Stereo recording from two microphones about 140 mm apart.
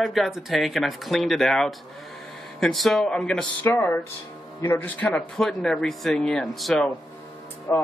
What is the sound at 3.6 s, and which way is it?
Speech, 15° left (ahead or behind).